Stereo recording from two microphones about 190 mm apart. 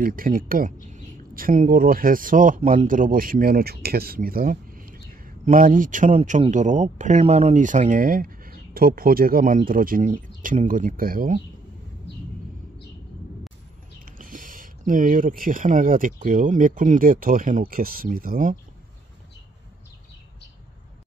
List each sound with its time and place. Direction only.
0.0 s speech: 50° right (ahead or behind)
14.0 s speech: 45° right (ahead or behind)